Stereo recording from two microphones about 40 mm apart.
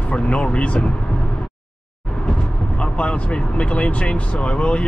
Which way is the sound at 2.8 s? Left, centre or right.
Left.